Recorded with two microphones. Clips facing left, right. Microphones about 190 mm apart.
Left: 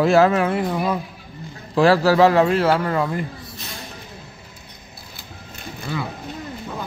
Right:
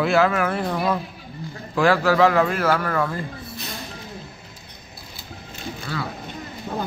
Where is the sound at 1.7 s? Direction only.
35° left (ahead or behind).